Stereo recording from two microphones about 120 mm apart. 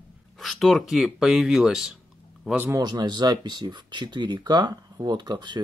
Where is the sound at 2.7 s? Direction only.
35° right (ahead or behind).